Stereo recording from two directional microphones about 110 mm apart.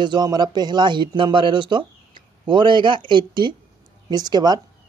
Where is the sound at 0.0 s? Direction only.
40° right (ahead or behind).